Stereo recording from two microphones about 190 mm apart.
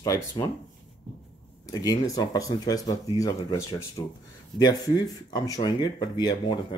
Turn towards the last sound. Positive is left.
turn(degrees=25)  # may be behind; listen again after turning